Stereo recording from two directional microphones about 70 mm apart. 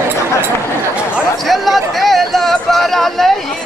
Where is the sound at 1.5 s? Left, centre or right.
Centre.